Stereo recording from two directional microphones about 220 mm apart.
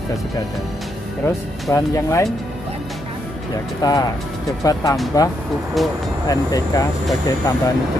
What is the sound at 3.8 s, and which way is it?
Speech, 15° left (ahead or behind).